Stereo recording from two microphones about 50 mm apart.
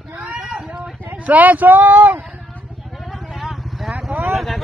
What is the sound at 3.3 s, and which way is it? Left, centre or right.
Vehicle, centre.